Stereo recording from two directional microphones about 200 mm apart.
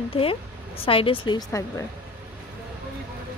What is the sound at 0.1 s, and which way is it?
A woman's voice, 30° left (ahead or behind).